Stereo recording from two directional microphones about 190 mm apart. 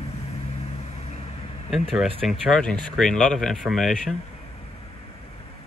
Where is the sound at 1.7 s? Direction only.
Centre (ahead or behind).